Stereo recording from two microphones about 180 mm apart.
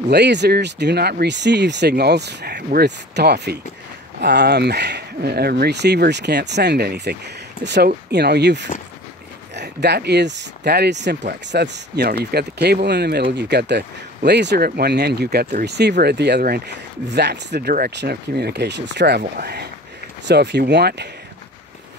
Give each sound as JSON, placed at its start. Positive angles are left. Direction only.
{"t": 0.1, "sound": "speech", "side_deg": -70}